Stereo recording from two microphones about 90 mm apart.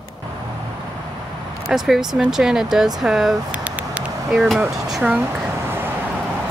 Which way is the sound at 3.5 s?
15° right (ahead or behind).